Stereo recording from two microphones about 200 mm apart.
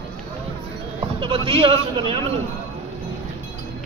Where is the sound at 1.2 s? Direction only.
25° right (ahead or behind).